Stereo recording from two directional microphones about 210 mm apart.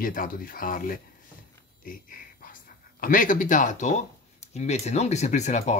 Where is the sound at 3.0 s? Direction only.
40° left (ahead or behind).